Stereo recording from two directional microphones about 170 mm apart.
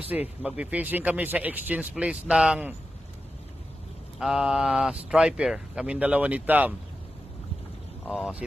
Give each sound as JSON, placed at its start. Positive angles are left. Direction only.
{"t": 0.4, "sound": "speech", "side_deg": -10}
{"t": 4.2, "sound": "speech", "side_deg": -5}
{"t": 8.1, "sound": "speech", "side_deg": -5}